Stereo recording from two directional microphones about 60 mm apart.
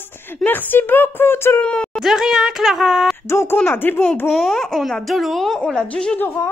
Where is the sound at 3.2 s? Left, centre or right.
Left.